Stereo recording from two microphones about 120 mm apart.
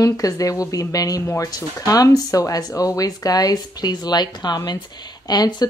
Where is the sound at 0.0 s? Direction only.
30° left (ahead or behind).